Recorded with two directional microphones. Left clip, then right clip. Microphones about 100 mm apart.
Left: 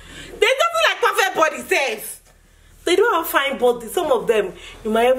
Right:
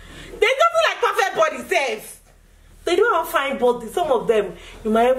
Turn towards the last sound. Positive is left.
turn(degrees=10)  # may be behind; listen again after turning